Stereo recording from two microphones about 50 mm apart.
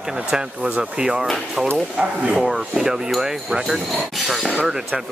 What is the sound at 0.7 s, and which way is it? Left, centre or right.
Speech, right.